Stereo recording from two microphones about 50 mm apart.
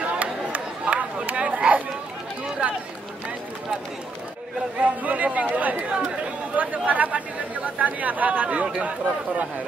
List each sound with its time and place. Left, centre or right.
0.2 s chatter: right
4.7 s chatter: right
5.9 s chatter: centre
6.5 s chatter: right
6.9 s speech: right
8.6 s speech: centre